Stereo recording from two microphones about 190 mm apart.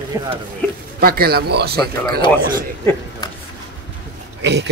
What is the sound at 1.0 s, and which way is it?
Speech, 50° right (ahead or behind).